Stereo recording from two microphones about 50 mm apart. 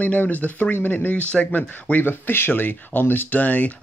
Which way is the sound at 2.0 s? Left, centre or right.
Left.